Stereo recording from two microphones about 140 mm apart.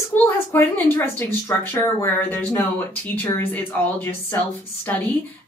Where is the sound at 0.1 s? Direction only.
15° left (ahead or behind).